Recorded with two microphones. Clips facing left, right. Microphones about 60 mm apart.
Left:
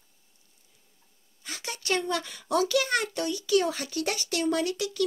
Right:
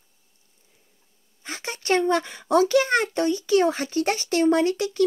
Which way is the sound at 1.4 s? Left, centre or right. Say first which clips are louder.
Right 6 dB; right.